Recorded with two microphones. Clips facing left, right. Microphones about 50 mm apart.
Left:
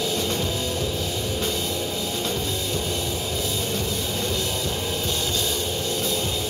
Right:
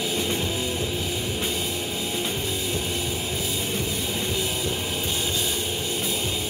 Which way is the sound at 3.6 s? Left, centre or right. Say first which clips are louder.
Left 1 dB; right.